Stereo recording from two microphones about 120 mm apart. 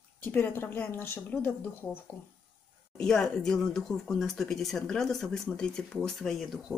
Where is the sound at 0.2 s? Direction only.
15° left (ahead or behind).